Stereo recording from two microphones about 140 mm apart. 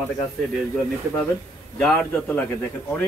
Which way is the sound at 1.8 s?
5° left (ahead or behind).